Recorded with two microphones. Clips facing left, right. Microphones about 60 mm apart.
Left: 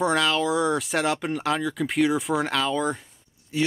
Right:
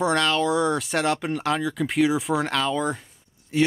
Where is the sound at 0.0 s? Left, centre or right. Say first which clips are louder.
Right 1 dB; centre.